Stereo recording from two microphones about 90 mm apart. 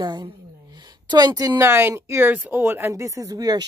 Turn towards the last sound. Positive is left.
turn(degrees=-45)  # may be behind; listen again after turning